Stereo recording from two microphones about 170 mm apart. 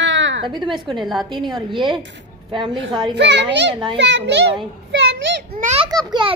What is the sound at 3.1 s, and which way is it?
A child's voice, 90° right.